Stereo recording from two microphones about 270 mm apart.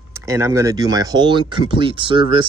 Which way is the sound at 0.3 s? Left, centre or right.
Centre.